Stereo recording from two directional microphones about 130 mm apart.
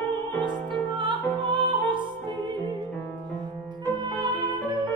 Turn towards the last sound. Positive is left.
turn(degrees=-35)  # may be behind; listen again after turning